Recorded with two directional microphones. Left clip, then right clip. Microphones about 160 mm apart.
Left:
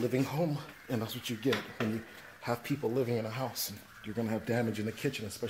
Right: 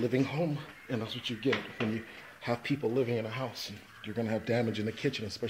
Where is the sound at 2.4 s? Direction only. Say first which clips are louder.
Right 2 dB; centre (ahead or behind).